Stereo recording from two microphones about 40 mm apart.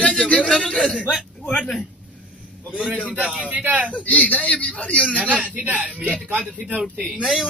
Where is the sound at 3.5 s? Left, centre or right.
Right.